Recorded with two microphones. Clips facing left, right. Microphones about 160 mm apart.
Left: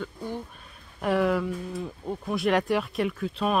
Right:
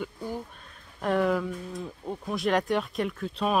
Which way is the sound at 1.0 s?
Centre (ahead or behind).